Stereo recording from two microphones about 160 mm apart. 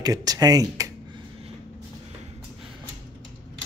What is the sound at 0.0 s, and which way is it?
Speech, 25° right (ahead or behind).